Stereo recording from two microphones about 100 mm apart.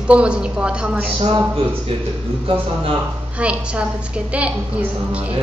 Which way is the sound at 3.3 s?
10° right (ahead or behind).